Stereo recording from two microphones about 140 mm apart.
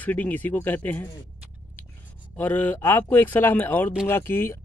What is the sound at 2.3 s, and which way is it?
Speech, 15° left (ahead or behind).